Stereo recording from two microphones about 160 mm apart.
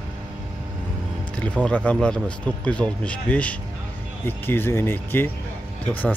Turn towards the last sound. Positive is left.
turn(degrees=10)  # may be behind; listen again after turning